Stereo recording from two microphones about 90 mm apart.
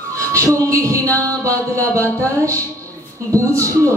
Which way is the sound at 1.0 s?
35° right (ahead or behind).